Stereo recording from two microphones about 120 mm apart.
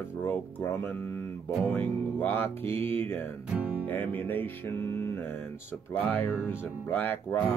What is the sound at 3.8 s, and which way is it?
Speech, 15° left (ahead or behind).